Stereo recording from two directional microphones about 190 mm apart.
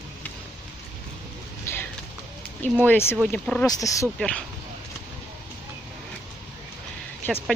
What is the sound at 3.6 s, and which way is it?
Speech, 15° left (ahead or behind).